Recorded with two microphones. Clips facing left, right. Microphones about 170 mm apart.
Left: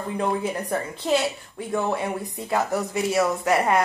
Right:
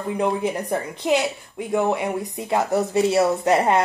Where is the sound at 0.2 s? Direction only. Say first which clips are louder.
Right 2 dB; 20° right (ahead or behind).